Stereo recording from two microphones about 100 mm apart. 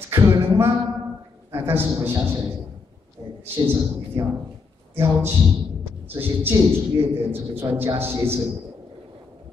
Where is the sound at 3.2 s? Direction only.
40° right (ahead or behind).